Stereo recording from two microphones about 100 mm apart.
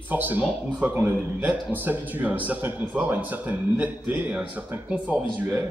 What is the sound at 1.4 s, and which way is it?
A man's voice, 15° right (ahead or behind).